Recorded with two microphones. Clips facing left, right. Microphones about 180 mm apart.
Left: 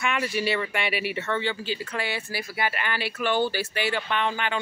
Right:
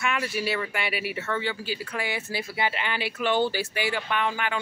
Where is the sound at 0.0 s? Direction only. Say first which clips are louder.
Left 2 dB; centre (ahead or behind).